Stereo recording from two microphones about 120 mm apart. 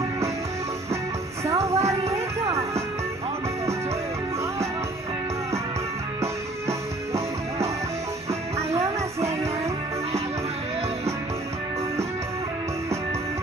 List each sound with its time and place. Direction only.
1.7 s music: 25° right (ahead or behind)